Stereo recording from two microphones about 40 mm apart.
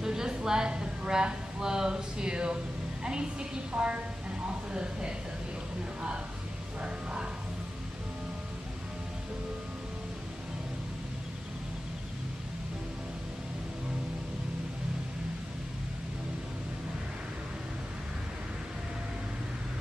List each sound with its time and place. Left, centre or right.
0.0 s speech: centre
6.8 s music: right